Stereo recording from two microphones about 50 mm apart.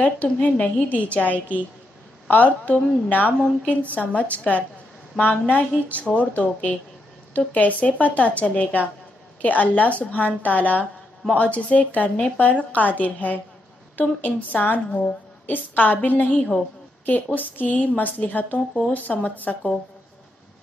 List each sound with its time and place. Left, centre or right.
0.0 s a woman's voice: left
3.3 s speech: centre
3.8 s a woman's voice: left
16.3 s speech: left
17.0 s a woman's voice: left